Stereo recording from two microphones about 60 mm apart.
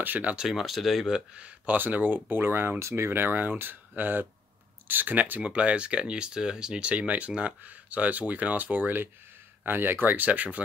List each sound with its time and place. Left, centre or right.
0.0 s speech: right
0.4 s speech: centre
1.8 s speech: right